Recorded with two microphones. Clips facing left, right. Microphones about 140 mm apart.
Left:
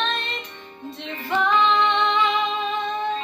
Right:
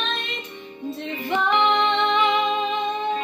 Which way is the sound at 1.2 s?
20° right (ahead or behind).